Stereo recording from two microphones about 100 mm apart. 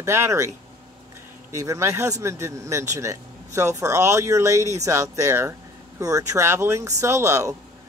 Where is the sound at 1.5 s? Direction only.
30° right (ahead or behind).